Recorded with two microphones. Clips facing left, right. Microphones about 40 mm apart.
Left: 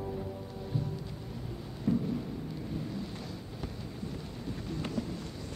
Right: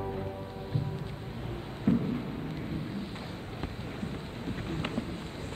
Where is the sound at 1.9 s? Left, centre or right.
Right.